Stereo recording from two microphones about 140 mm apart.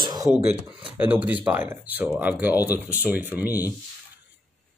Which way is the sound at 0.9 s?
15° right (ahead or behind).